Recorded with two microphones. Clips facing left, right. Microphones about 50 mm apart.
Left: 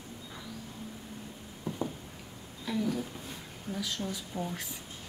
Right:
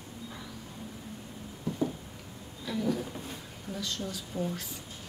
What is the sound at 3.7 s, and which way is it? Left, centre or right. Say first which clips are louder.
Speech: left 1 dB; centre.